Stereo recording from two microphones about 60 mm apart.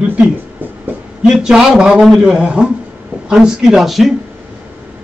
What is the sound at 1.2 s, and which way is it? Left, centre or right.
Speech, centre.